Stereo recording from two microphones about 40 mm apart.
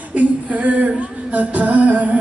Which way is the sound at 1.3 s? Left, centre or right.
Right.